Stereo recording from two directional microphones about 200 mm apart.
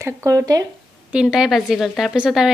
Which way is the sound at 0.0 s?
15° right (ahead or behind).